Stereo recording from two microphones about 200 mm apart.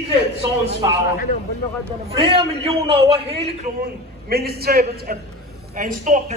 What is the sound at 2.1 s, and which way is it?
A man's voice, 25° right (ahead or behind).